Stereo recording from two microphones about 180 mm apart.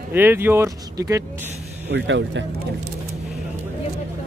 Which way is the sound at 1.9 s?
90° right.